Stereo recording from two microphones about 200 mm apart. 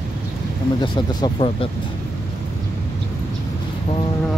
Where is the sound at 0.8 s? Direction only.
25° left (ahead or behind).